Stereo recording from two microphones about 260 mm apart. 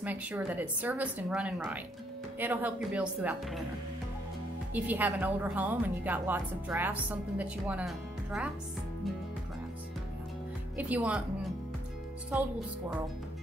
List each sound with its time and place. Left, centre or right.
0.0 s speech: centre
4.7 s a woman's voice: centre
10.8 s speech: centre